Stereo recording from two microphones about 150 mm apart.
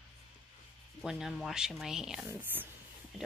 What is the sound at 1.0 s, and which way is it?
Speech, 5° right (ahead or behind).